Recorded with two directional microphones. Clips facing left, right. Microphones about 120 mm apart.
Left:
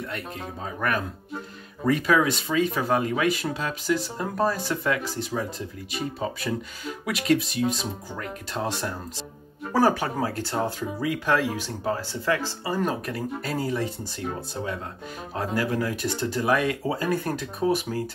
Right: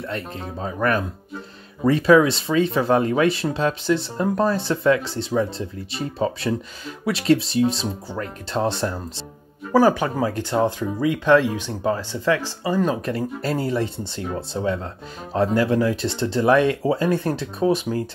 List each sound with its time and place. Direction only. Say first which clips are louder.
1.9 s speech: right 6 dB; 30° right (ahead or behind)
9.7 s speech: right 5 dB; 20° right (ahead or behind)